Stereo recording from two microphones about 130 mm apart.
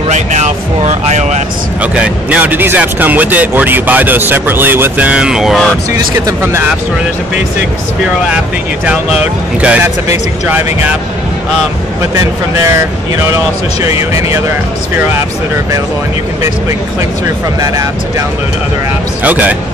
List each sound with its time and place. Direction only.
0.1 s a sound: 65° right (ahead or behind)
1.8 s speech: 10° right (ahead or behind)
6.1 s speech: 20° right (ahead or behind)
8.8 s speech: 10° right (ahead or behind)
12.6 s speech: 25° right (ahead or behind)
19.2 s speech: 10° right (ahead or behind)